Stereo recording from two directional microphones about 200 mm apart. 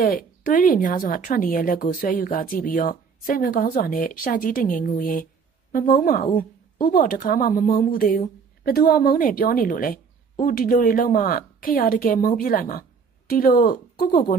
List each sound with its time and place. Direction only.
0.0 s speech: 45° left (ahead or behind)